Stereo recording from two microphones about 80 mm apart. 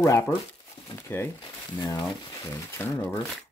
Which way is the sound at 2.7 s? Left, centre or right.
Left.